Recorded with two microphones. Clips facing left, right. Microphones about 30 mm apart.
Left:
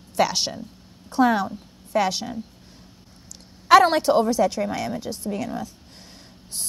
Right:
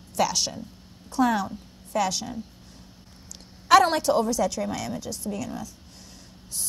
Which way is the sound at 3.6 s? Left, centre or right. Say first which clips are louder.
Left 3 dB; centre.